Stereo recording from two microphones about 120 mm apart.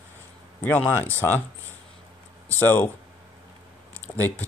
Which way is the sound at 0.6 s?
15° left (ahead or behind).